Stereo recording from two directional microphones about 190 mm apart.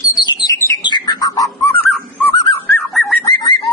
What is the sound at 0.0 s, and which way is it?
Bird, 20° left (ahead or behind).